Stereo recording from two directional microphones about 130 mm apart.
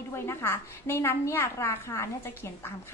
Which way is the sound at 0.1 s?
20° left (ahead or behind).